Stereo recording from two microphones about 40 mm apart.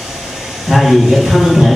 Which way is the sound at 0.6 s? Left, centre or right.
Centre.